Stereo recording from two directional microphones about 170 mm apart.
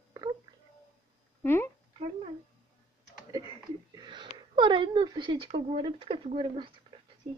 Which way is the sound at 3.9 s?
25° right (ahead or behind).